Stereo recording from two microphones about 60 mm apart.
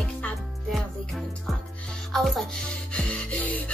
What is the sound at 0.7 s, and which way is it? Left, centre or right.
Music, centre.